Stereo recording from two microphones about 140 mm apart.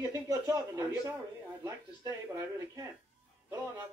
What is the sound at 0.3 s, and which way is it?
A man's voice, 20° right (ahead or behind).